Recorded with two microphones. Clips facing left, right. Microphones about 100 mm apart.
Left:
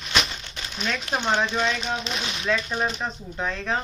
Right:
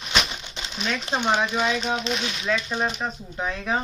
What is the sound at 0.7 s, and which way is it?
Speech, 5° right (ahead or behind).